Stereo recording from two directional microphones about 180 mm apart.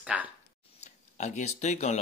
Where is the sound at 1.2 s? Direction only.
40° left (ahead or behind).